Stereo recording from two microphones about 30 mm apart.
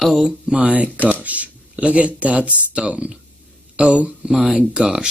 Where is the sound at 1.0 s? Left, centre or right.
Left.